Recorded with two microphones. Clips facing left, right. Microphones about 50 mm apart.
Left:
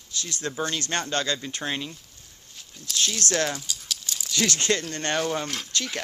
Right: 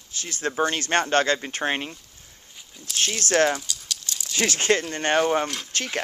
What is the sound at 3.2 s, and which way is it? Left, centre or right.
Speech, right.